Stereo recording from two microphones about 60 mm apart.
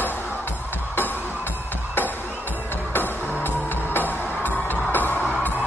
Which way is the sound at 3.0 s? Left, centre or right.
Left.